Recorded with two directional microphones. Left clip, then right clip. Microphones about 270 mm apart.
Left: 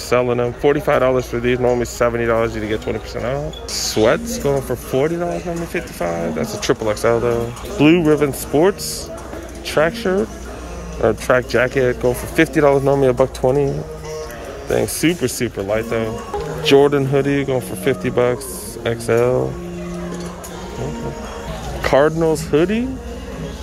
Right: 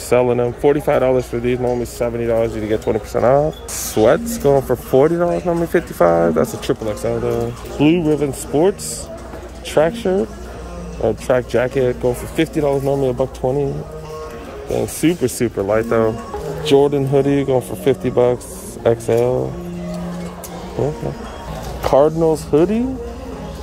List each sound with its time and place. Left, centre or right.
0.1 s speech: centre
12.6 s speech: left
14.8 s speech: centre
22.3 s speech: centre